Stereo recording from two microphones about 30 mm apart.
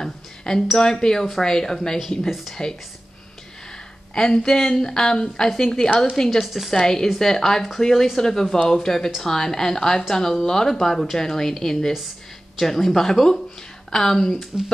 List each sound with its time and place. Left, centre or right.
0.0 s a sound: centre
0.7 s speech: centre
2.6 s speech: left
4.1 s speech: left
6.4 s a woman's voice: centre
6.7 s speech: centre